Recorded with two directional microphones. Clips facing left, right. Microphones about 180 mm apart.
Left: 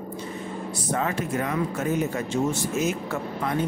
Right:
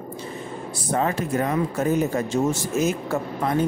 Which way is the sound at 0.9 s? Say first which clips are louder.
Right 4 dB; 35° right (ahead or behind).